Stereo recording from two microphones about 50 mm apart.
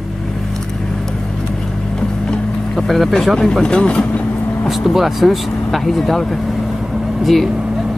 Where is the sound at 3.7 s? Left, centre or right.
Left.